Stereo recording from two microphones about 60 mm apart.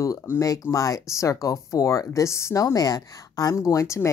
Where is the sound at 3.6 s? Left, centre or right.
Left.